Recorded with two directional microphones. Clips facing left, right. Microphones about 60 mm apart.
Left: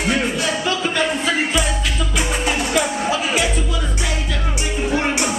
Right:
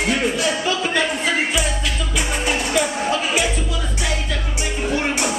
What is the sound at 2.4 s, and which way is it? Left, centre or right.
Music, centre.